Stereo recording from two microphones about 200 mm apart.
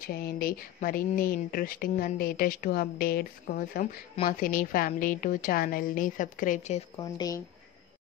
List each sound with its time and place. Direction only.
0.0 s speech: 50° left (ahead or behind)
7.0 s speech: 15° left (ahead or behind)